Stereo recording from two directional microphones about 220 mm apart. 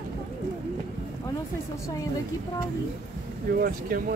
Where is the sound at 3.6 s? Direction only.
45° right (ahead or behind).